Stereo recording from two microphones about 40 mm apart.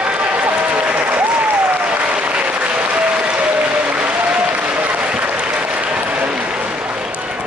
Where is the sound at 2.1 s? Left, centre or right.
Right.